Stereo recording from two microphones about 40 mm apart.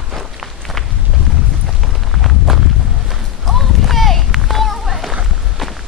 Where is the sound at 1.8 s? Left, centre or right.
Centre.